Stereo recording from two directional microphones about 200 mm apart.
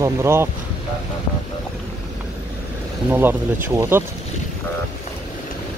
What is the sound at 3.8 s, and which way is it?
Speech, 10° right (ahead or behind).